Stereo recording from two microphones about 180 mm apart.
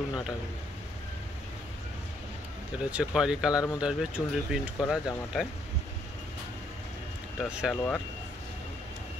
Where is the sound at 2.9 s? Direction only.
5° right (ahead or behind).